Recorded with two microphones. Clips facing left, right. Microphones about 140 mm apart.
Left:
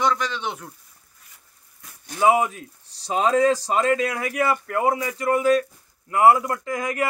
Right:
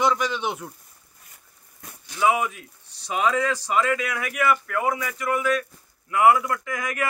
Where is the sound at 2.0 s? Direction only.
40° left (ahead or behind).